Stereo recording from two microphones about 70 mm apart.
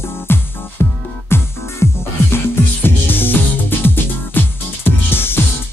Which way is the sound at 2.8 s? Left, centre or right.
Left.